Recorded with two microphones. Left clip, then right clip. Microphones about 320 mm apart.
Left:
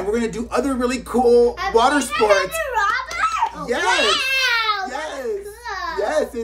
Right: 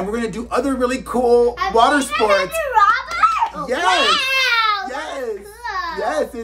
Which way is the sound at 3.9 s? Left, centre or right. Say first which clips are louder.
Right 2 dB; centre.